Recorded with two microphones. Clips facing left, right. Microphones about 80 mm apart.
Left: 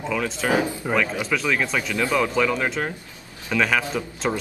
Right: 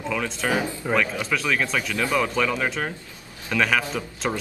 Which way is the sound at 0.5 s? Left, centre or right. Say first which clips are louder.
Left 3 dB; centre.